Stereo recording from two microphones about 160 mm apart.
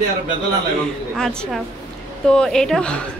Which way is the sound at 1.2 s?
5° left (ahead or behind).